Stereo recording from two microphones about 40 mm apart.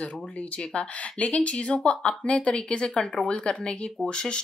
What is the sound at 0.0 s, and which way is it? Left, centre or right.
Speech, left.